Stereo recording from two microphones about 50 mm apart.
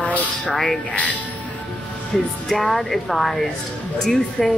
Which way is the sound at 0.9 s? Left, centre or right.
Left.